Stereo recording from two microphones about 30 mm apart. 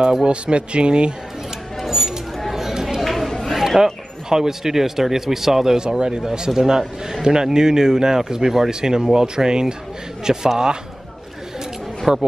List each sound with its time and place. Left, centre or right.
0.2 s speech: right
1.9 s a sound: centre
3.0 s chatter: centre
3.5 s a sound: centre
4.3 s speech: centre
5.8 s speech: right
6.5 s speech: centre
12.1 s speech: centre